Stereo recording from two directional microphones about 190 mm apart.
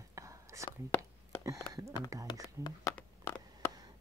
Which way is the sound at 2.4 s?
20° left (ahead or behind).